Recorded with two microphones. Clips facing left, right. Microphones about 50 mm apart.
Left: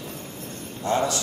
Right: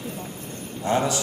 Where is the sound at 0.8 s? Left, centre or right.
Right.